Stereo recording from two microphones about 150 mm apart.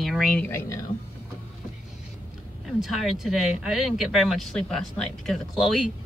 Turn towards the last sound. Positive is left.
turn(degrees=0)  # may be behind; listen again after turning